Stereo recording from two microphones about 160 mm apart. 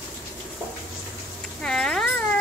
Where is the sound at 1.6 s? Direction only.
5° left (ahead or behind).